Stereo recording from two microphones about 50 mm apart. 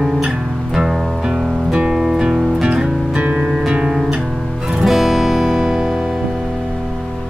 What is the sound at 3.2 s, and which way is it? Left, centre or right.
Music, right.